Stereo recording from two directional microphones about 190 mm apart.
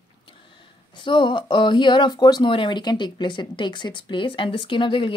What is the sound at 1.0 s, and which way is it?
A woman's voice, 25° left (ahead or behind).